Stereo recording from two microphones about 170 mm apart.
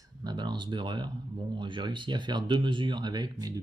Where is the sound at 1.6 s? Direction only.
30° right (ahead or behind).